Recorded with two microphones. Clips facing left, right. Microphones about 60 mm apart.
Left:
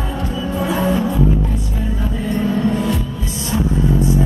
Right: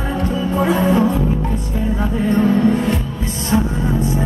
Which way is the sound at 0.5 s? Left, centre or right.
Right.